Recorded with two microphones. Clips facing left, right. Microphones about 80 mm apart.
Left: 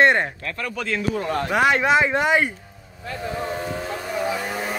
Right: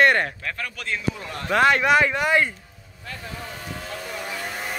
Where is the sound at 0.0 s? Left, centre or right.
Left.